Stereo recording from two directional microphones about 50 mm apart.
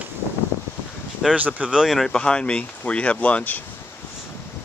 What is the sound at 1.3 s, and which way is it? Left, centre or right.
Speech, right.